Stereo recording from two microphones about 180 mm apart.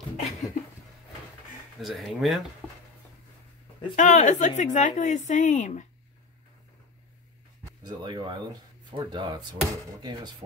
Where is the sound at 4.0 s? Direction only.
45° left (ahead or behind).